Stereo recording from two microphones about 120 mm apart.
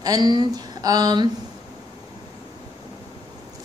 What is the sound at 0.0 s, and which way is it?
Speech, 35° right (ahead or behind).